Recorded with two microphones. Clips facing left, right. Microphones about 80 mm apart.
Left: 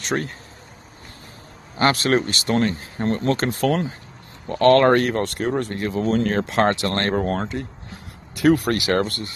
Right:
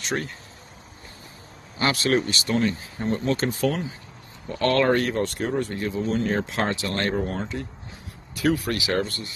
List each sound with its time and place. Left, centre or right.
0.0 s speech: left
1.8 s speech: left
3.0 s speech: left
3.3 s speech: left
4.5 s speech: left